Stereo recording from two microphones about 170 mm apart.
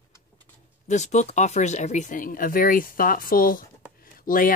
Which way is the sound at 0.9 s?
45° left (ahead or behind).